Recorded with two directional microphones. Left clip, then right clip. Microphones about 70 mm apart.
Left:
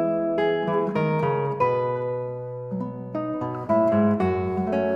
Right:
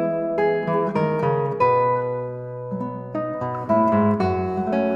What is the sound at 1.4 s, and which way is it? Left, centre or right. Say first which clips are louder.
Music: right 4 dB; left.